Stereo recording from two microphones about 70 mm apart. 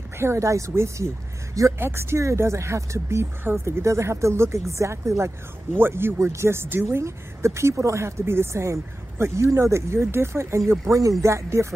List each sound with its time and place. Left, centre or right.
0.2 s speech: right
1.8 s speech: right
5.8 s speech: right